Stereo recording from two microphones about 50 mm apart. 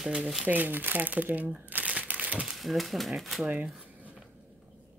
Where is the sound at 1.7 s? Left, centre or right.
Right.